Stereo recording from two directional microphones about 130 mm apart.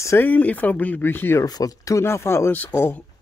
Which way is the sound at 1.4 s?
30° left (ahead or behind).